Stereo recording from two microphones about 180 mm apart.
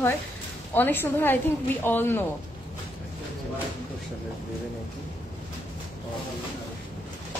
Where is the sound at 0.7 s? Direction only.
10° left (ahead or behind).